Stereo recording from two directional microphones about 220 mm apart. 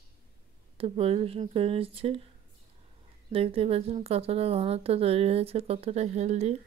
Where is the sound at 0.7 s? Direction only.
25° right (ahead or behind).